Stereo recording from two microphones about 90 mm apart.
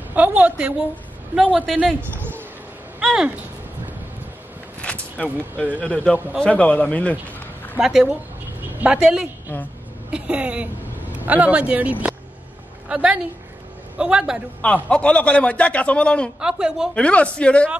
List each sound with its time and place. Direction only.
0.1 s a woman's voice: 15° right (ahead or behind)
2.0 s a sound: 20° right (ahead or behind)
3.0 s speech: 10° right (ahead or behind)
4.8 s a sound: 15° left (ahead or behind)
5.8 s a man's voice: 15° left (ahead or behind)
7.8 s a woman's voice: 5° right (ahead or behind)
14.6 s a man's voice: 15° left (ahead or behind)
16.3 s speech: 10° right (ahead or behind)
16.9 s a man's voice: 15° left (ahead or behind)